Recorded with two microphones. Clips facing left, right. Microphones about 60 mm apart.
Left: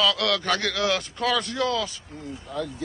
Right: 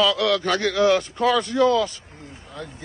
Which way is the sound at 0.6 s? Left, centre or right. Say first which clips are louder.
Right 7 dB; right.